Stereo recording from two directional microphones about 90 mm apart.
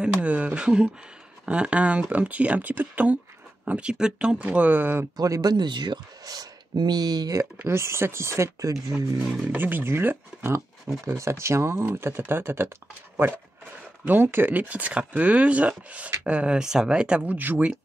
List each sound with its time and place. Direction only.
0.0 s speech: 15° right (ahead or behind)
5.1 s speech: 45° right (ahead or behind)
7.6 s speech: 30° right (ahead or behind)
9.5 s speech: 20° right (ahead or behind)
14.0 s speech: 25° right (ahead or behind)